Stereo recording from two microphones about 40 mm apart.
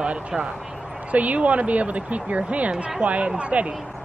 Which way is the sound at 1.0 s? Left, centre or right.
Right.